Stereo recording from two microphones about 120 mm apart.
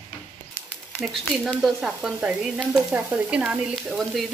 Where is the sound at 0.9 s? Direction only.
5° right (ahead or behind).